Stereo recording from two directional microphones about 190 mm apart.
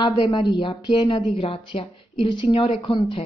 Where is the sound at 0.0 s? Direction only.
25° left (ahead or behind).